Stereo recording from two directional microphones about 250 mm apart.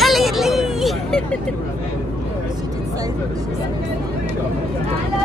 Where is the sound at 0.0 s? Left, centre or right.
Centre.